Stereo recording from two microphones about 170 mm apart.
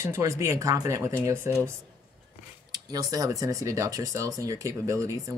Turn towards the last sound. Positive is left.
turn(degrees=-20)  # may be behind; listen again after turning